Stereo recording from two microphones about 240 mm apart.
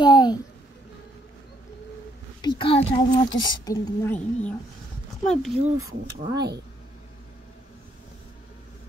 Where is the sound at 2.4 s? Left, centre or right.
Left.